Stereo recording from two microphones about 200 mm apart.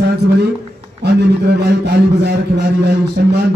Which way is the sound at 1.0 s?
55° right (ahead or behind).